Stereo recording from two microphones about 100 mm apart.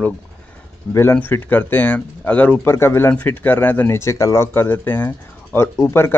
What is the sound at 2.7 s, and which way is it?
Speech, 25° left (ahead or behind).